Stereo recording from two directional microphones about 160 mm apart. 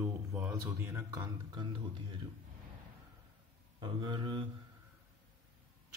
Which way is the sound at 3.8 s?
30° right (ahead or behind).